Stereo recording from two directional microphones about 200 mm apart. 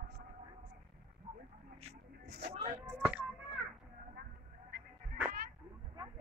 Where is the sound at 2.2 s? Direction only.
55° right (ahead or behind).